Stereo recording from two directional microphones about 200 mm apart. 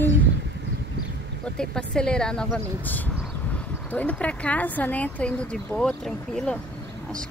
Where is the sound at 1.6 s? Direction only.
5° left (ahead or behind).